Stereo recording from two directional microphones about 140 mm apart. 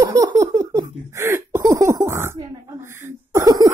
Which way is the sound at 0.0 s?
25° right (ahead or behind).